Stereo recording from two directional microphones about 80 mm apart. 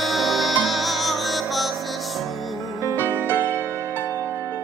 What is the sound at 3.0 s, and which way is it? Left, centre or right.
Music, right.